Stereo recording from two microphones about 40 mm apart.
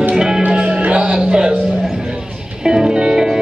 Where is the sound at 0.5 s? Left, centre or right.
Right.